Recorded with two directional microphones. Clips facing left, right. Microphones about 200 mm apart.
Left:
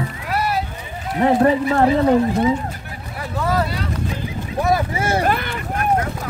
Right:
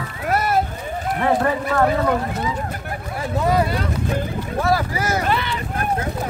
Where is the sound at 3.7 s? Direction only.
50° right (ahead or behind).